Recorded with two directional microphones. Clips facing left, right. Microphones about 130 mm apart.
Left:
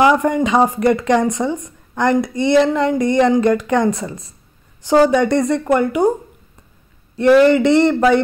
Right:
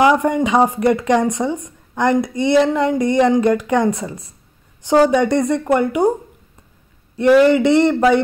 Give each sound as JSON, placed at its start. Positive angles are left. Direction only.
{"t": 0.0, "sound": "speech", "side_deg": -15}
{"t": 7.2, "sound": "speech", "side_deg": -15}